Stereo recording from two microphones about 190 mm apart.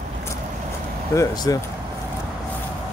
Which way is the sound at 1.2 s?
20° left (ahead or behind).